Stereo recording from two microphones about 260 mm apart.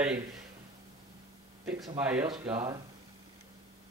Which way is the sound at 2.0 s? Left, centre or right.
Centre.